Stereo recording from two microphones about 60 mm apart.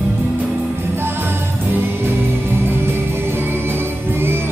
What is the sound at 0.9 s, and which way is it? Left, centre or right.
Music, right.